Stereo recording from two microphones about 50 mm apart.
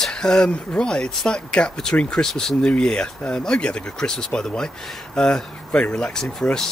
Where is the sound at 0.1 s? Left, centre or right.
Centre.